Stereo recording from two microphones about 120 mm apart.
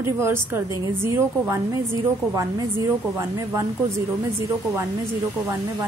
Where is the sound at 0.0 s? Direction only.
20° right (ahead or behind).